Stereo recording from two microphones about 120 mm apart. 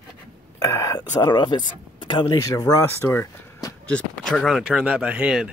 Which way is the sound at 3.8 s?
10° left (ahead or behind).